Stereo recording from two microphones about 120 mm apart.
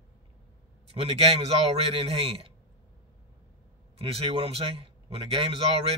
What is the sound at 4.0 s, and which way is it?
A man's voice, 55° right (ahead or behind).